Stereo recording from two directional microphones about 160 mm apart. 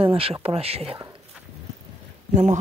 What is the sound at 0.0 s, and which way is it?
Speech, 35° right (ahead or behind).